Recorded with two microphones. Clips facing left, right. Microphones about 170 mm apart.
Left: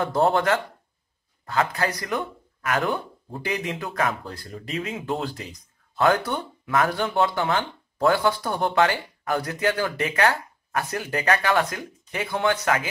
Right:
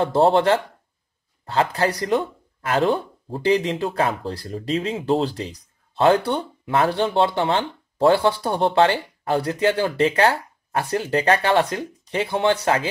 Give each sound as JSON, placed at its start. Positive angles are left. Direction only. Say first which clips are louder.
{"t": 0.0, "sound": "speech", "louder": "right 4 dB", "side_deg": -30}